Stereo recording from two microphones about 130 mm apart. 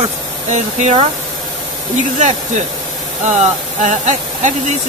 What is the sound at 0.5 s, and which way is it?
Speech, 65° right (ahead or behind).